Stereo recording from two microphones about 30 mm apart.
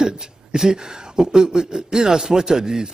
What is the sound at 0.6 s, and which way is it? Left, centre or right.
A man's voice, right.